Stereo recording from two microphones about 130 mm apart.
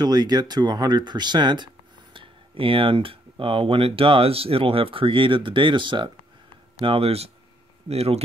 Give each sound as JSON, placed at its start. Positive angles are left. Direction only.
{"t": 0.0, "sound": "speech", "side_deg": -30}